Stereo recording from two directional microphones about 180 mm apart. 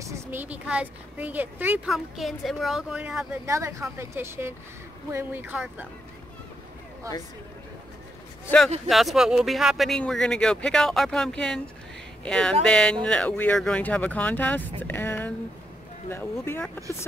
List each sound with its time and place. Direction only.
0.0 s speech: 10° right (ahead or behind)
3.4 s speech: 15° right (ahead or behind)
7.0 s speech: 15° right (ahead or behind)
8.8 s speech: centre (ahead or behind)